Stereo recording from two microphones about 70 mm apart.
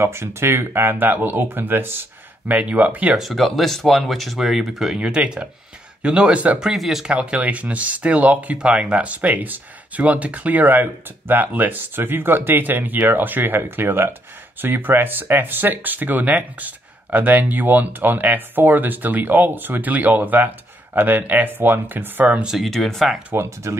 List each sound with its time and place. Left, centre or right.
0.0 s speech: right
3.2 s speech: centre
4.9 s speech: centre
6.6 s speech: centre
7.1 s speech: centre
22.4 s speech: centre
22.7 s speech: centre
23.3 s speech: right